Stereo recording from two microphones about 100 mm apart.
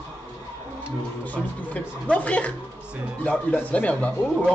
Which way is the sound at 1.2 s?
15° left (ahead or behind).